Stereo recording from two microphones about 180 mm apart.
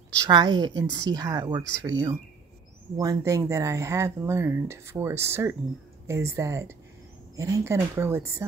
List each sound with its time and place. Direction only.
0.2 s a woman's voice: 25° right (ahead or behind)